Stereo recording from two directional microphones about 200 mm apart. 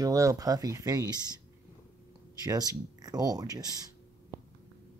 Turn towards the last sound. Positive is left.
turn(degrees=-20)  # may be behind; listen again after turning